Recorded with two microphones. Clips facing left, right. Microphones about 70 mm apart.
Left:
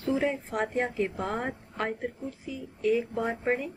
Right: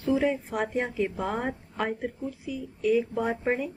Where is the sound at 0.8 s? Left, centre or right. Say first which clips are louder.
Right 1 dB; centre.